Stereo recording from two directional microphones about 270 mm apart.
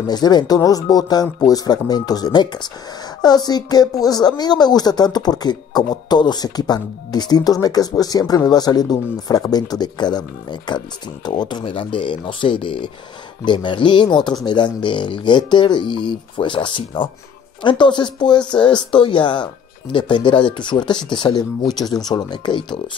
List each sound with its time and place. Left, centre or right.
0.0 s speech: centre